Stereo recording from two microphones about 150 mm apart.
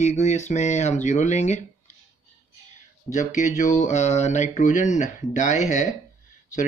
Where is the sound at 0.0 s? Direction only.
50° left (ahead or behind).